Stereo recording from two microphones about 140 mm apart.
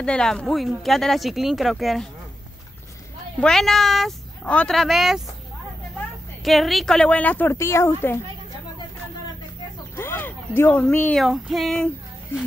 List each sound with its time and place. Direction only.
0.0 s speech: 5° left (ahead or behind)
3.3 s a woman's voice: 5° left (ahead or behind)
9.9 s a sound: 15° left (ahead or behind)
11.1 s speech: centre (ahead or behind)
12.3 s speech: 15° left (ahead or behind)